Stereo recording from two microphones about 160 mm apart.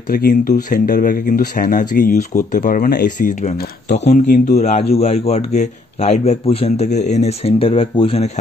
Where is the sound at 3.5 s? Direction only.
75° left (ahead or behind).